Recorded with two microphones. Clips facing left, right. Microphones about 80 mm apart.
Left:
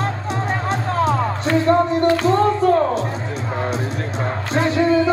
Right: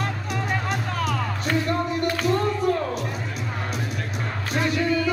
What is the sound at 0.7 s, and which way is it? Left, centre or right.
Music, left.